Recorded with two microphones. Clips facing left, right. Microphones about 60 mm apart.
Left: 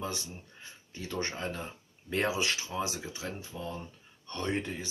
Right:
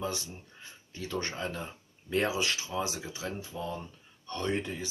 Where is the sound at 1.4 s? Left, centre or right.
Left.